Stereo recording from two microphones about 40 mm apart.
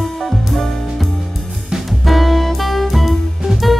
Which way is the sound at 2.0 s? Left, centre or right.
Centre.